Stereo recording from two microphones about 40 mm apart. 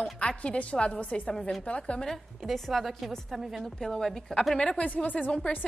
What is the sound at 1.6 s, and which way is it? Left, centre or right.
Speech, left.